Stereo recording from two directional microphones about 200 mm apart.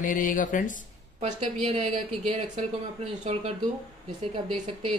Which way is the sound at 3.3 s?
30° right (ahead or behind).